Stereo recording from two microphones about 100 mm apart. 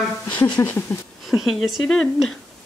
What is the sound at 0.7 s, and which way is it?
Speech, 20° left (ahead or behind).